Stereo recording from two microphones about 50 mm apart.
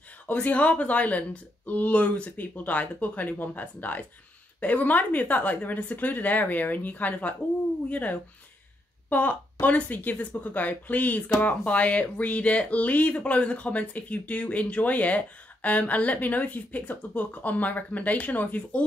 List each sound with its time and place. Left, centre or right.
0.3 s speech: left